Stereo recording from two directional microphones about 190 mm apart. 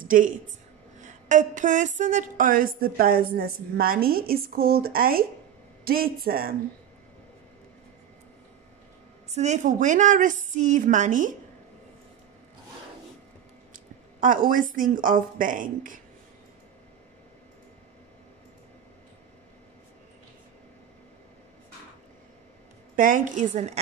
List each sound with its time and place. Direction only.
0.0 s a woman's voice: 45° right (ahead or behind)
9.3 s a woman's voice: 35° right (ahead or behind)
14.2 s a woman's voice: 45° right (ahead or behind)
22.9 s a woman's voice: 45° right (ahead or behind)